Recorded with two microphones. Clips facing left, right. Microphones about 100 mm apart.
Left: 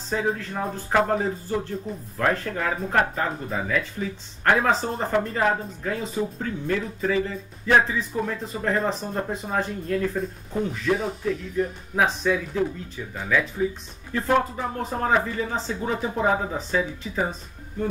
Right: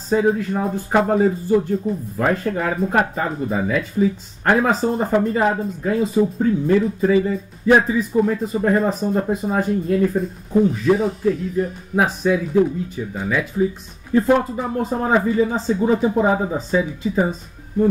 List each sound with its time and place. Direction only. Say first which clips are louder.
0.1 s speech: right 8 dB; 10° right (ahead or behind)